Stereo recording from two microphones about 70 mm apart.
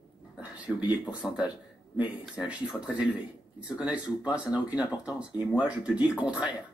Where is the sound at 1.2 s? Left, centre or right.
Centre.